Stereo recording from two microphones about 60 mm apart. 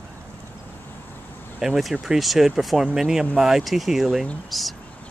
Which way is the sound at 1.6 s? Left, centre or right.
Centre.